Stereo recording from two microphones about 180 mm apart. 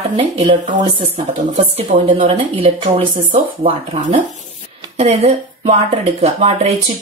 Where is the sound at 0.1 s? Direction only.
30° right (ahead or behind).